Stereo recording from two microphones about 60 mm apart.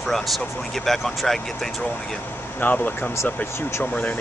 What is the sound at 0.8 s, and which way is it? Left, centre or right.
Speech, centre.